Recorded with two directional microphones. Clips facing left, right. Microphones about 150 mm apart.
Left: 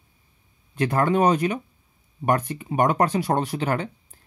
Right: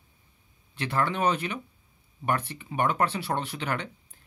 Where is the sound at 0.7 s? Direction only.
45° left (ahead or behind).